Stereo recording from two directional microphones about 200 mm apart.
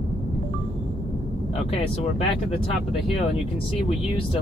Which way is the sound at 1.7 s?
30° left (ahead or behind).